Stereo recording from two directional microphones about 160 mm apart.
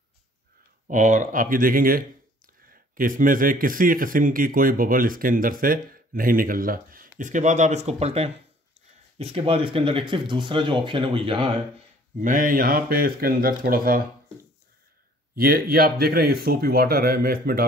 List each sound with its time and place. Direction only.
0.8 s speech: 50° right (ahead or behind); by 11.5 s 35° right (ahead or behind)
12.2 s speech: 55° right (ahead or behind)
15.3 s speech: 65° right (ahead or behind)